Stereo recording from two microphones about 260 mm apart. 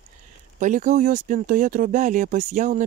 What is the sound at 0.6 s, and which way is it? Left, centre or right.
Speech, right.